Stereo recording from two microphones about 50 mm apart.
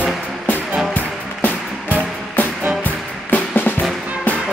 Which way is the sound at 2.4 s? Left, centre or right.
Left.